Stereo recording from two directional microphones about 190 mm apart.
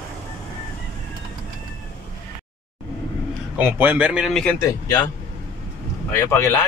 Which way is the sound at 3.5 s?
10° right (ahead or behind).